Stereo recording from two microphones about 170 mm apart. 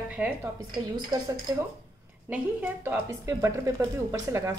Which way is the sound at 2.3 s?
10° right (ahead or behind).